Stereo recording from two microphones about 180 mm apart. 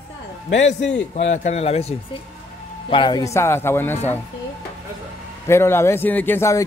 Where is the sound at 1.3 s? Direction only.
40° left (ahead or behind); by 4.2 s 10° left (ahead or behind).